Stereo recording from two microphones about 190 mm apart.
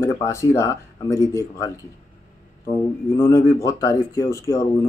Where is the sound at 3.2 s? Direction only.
15° left (ahead or behind).